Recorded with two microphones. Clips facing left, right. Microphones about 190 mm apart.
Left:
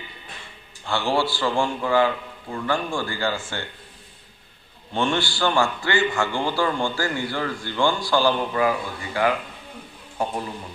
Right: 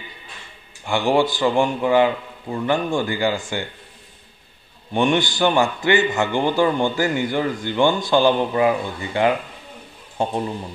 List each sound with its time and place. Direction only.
0.8 s a man's voice: 15° right (ahead or behind)
4.9 s a man's voice: 15° right (ahead or behind)